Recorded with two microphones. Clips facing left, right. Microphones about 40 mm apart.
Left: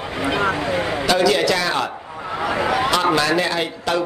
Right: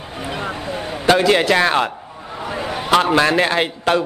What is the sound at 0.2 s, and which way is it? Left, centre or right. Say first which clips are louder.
Speech: left 6 dB; left.